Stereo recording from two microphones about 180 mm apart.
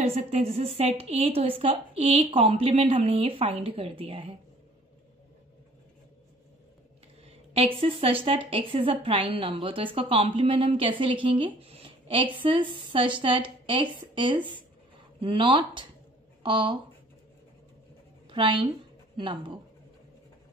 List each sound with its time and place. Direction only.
0.0 s a woman's voice: 35° right (ahead or behind)
7.2 s a woman's voice: 35° right (ahead or behind)
18.3 s a woman's voice: 25° right (ahead or behind)